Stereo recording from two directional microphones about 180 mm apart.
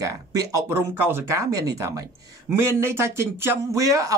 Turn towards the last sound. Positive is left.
turn(degrees=-20)  # may be behind; listen again after turning